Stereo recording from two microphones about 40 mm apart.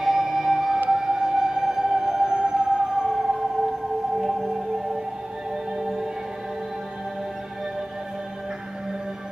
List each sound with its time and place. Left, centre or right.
0.0 s music: centre